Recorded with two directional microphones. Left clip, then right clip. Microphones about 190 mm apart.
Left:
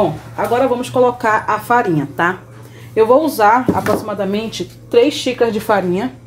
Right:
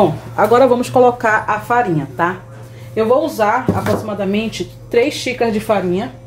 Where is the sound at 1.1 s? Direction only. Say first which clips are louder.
Even; 10° left (ahead or behind).